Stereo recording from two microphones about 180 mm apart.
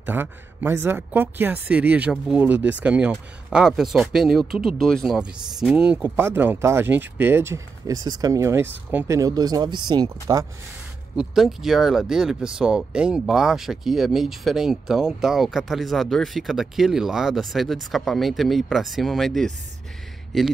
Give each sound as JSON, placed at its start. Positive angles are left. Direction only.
{"t": 0.0, "sound": "speech", "side_deg": -10}
{"t": 11.1, "sound": "speech", "side_deg": 0}